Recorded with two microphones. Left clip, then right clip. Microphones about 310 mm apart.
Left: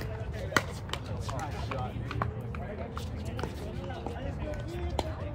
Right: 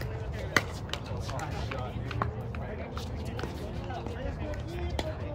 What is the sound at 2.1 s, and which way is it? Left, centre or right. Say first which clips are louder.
Run: right 1 dB; centre.